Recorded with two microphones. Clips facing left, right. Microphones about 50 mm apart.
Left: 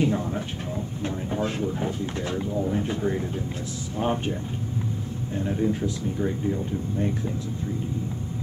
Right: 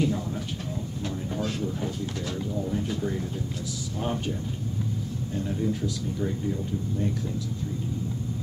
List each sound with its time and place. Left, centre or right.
0.0 s speech: left